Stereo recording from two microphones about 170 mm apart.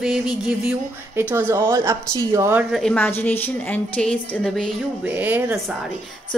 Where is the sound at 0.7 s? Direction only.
10° right (ahead or behind).